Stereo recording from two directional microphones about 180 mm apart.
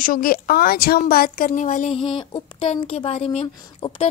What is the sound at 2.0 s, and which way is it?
A woman's voice, 30° left (ahead or behind).